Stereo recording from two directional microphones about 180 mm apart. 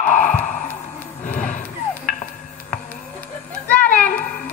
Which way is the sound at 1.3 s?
45° left (ahead or behind).